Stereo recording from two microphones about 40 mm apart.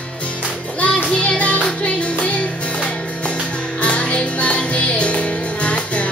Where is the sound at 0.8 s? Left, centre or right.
Left.